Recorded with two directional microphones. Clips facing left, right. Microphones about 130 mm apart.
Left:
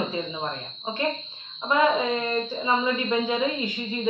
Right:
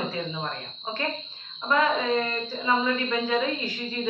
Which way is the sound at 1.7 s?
15° left (ahead or behind).